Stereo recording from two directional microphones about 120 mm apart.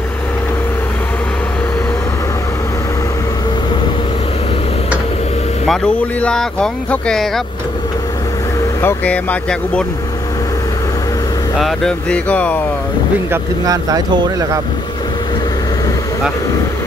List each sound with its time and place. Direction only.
5.7 s speech: 5° left (ahead or behind)
8.8 s speech: 10° left (ahead or behind)
11.5 s speech: 5° left (ahead or behind)
13.7 s speech: 30° right (ahead or behind)